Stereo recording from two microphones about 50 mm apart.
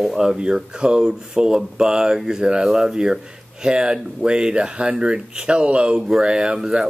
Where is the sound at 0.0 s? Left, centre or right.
Centre.